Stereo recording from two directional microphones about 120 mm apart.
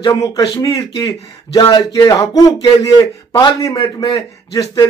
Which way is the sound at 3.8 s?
50° left (ahead or behind).